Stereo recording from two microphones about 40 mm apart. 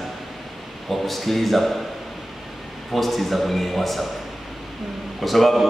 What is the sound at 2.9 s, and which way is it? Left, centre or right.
A man's voice, centre.